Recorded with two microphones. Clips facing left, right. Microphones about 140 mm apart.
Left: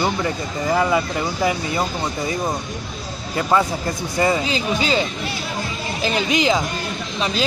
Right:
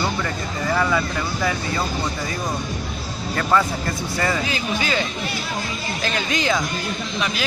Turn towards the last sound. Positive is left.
turn(degrees=20)  # may be behind; listen again after turning